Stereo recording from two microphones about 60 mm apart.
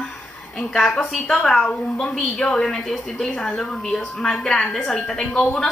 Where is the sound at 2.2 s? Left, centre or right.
Centre.